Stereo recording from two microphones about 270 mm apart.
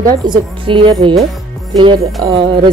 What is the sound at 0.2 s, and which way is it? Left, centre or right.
Speech, centre.